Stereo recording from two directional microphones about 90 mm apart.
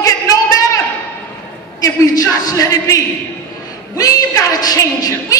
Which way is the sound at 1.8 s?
40° left (ahead or behind).